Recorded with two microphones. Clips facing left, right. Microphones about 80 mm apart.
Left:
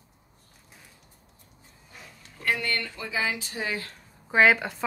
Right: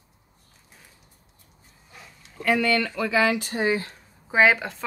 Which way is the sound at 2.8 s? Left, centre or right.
Right.